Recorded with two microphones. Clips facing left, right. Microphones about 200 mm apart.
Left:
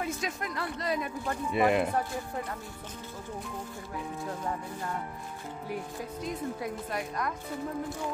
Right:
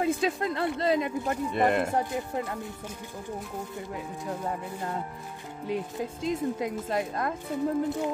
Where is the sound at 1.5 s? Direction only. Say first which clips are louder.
Even; 5° left (ahead or behind).